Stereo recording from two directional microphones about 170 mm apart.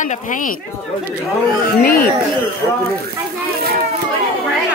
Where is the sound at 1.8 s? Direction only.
60° left (ahead or behind).